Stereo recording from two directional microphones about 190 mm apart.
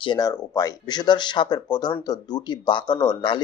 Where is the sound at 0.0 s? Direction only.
20° left (ahead or behind).